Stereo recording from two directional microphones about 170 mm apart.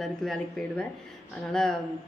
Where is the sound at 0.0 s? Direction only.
Centre (ahead or behind).